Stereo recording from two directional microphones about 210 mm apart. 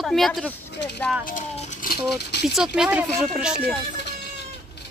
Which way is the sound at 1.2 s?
35° left (ahead or behind).